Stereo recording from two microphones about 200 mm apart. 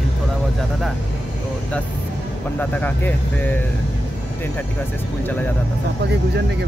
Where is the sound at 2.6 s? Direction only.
10° left (ahead or behind).